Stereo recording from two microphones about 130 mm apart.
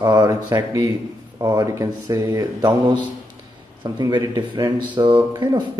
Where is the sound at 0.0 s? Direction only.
30° right (ahead or behind).